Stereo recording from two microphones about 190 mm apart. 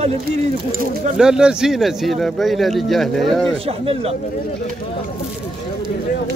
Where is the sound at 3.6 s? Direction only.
30° right (ahead or behind).